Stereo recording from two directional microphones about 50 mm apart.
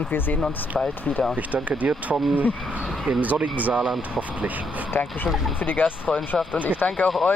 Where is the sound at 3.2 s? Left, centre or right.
Right.